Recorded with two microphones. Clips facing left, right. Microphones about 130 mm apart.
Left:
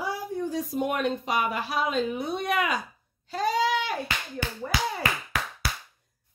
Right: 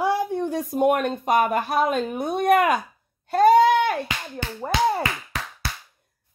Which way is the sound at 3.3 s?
55° right (ahead or behind).